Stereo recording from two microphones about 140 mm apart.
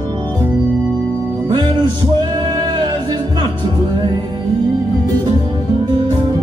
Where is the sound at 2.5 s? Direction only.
30° right (ahead or behind).